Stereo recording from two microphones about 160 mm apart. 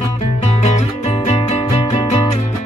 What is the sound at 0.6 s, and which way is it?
Music, 45° left (ahead or behind).